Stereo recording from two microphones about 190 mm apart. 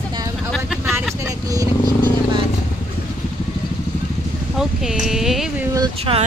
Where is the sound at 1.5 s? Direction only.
20° right (ahead or behind).